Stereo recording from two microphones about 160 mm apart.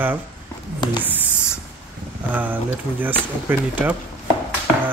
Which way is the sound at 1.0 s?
10° right (ahead or behind).